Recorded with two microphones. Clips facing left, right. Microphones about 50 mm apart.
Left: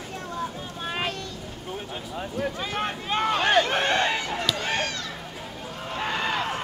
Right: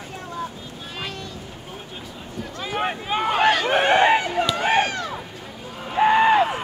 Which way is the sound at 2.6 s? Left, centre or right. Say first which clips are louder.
Right 3 dB; centre.